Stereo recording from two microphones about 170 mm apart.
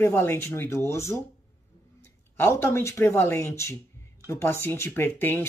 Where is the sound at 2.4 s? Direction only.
15° left (ahead or behind).